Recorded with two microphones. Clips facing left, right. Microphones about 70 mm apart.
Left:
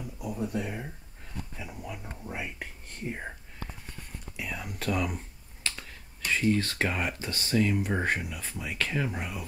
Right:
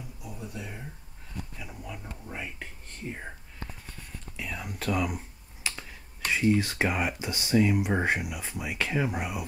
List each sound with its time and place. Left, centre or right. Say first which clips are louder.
0.2 s speech: left 9 dB; left
1.6 s speech: left 1 dB; centre
4.4 s speech: even; centre